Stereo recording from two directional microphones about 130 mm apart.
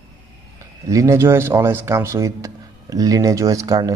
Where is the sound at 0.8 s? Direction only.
25° right (ahead or behind).